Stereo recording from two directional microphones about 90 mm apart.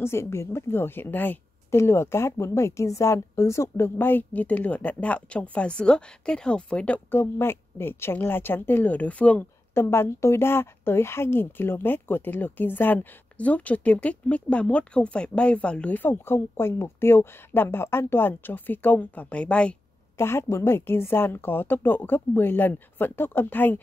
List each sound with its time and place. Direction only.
0.0 s speech: 30° left (ahead or behind); by 7.0 s 10° left (ahead or behind)
7.1 s speech: 25° left (ahead or behind)
9.8 s speech: 30° left (ahead or behind); by 19.8 s 10° left (ahead or behind)
20.2 s speech: 30° left (ahead or behind)